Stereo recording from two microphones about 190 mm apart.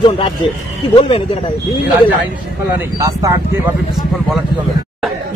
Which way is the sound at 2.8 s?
15° right (ahead or behind).